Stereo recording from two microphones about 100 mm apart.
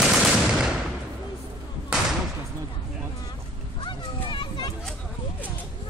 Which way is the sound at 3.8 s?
55° left (ahead or behind).